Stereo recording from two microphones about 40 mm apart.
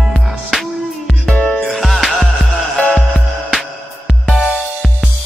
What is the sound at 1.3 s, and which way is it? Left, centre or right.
Music, centre.